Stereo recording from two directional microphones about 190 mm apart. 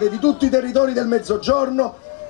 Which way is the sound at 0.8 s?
25° left (ahead or behind).